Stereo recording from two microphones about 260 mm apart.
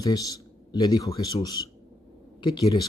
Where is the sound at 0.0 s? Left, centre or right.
Centre.